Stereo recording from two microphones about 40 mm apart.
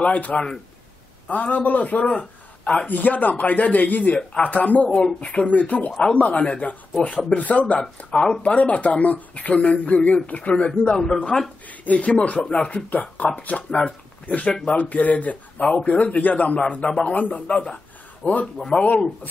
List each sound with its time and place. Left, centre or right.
0.0 s speech: left
2.1 s a sound: left
2.9 s speech: left
4.8 s speech: left
5.3 s speech: left
5.9 s speech: centre
6.1 s speech: left
8.1 s speech: left
11.3 s speech: centre
11.8 s speech: left